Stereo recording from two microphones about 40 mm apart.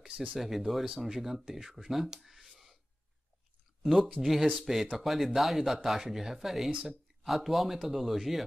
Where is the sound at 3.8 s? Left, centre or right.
Centre.